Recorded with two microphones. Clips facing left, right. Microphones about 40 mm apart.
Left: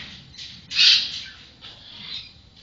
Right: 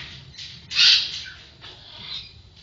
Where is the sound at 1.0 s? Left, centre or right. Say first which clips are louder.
Even; centre.